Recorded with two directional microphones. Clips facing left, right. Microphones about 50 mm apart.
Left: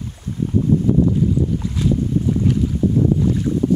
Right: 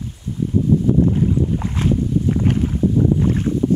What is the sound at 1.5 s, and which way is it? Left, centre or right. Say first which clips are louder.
Boat: even; right.